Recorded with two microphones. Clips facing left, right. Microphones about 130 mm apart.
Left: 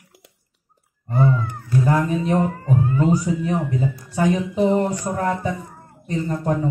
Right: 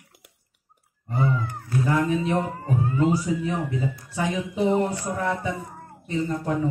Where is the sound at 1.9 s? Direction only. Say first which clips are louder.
Left 1 dB; 40° left (ahead or behind).